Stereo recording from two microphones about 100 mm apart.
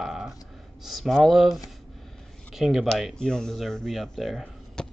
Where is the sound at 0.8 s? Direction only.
Centre (ahead or behind).